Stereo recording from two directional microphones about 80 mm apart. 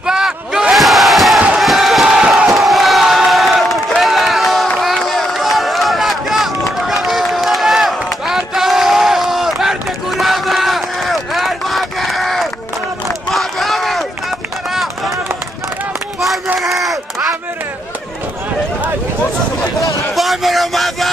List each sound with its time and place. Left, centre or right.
0.0 s battle cry: centre
0.7 s crowd: centre
4.8 s run: centre
13.3 s a sound: centre
14.7 s run: centre
16.5 s crowd: centre
20.2 s a sound: centre